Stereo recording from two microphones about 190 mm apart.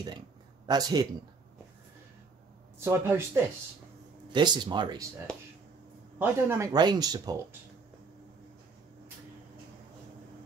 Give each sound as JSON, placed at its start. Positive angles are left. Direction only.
{"t": 0.7, "sound": "speech", "side_deg": -20}
{"t": 2.8, "sound": "speech", "side_deg": -15}
{"t": 4.3, "sound": "speech", "side_deg": -25}
{"t": 6.1, "sound": "speech", "side_deg": -15}